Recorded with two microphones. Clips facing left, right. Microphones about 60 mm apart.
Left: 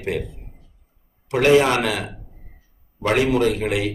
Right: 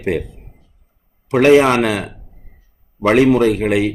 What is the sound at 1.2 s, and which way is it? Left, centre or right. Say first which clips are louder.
A man's voice: right 5 dB; right.